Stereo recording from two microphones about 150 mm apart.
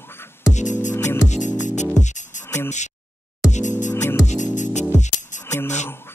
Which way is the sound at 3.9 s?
20° left (ahead or behind).